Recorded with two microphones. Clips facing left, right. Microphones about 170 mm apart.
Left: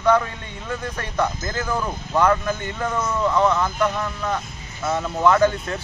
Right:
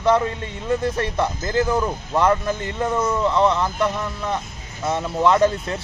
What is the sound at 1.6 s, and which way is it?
Speech, 20° right (ahead or behind).